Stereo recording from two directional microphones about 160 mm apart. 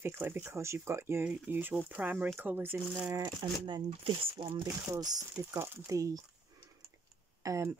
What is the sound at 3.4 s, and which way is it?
Speech, 30° right (ahead or behind).